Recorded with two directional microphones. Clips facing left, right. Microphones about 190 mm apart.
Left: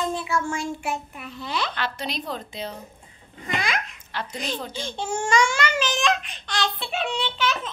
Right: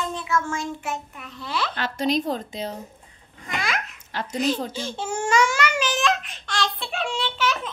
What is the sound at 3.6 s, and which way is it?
Babbling, centre (ahead or behind).